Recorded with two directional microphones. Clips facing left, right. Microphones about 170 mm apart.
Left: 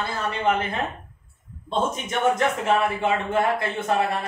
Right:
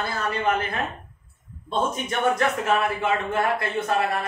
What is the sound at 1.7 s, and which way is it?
A man's voice, 25° left (ahead or behind).